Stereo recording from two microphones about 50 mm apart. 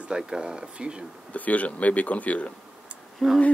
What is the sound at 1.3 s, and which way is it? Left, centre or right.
Speech, left.